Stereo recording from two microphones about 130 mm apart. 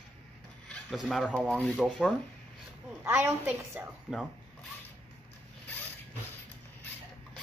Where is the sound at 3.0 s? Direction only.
20° right (ahead or behind).